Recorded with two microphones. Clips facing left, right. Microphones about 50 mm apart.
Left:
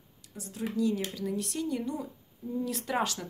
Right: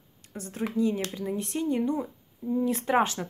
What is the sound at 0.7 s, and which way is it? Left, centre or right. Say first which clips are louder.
A woman's voice: right 2 dB; right.